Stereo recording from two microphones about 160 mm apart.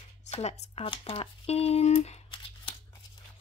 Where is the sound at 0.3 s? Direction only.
40° left (ahead or behind).